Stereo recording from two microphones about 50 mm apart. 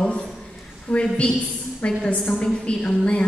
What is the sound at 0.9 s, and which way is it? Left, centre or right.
A woman's voice, centre.